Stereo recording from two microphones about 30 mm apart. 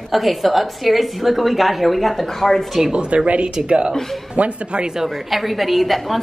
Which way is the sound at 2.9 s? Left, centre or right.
Right.